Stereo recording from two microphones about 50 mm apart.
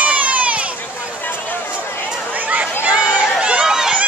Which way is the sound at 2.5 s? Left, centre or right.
Right.